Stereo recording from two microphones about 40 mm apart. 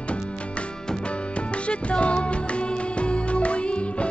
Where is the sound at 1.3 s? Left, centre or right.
Left.